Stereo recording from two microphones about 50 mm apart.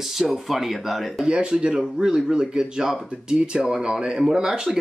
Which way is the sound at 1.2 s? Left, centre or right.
Centre.